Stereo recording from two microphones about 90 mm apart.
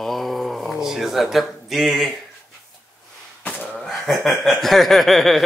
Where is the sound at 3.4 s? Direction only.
15° left (ahead or behind).